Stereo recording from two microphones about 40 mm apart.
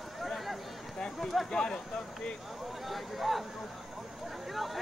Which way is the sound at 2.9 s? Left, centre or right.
Centre.